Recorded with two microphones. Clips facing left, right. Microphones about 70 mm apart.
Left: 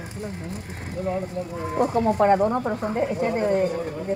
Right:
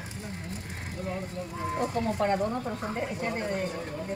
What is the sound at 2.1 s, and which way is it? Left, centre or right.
Speech, left.